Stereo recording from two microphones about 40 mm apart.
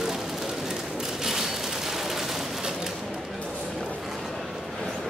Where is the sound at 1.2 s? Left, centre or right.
Centre.